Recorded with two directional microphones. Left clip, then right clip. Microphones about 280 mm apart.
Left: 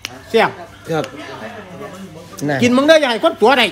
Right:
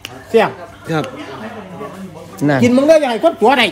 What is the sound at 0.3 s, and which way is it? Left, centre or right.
Speech, centre.